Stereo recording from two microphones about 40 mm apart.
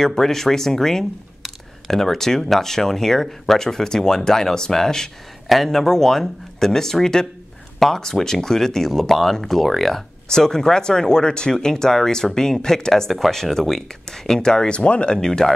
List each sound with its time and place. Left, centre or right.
0.0 s speech: centre
14.8 s speech: left
15.1 s speech: centre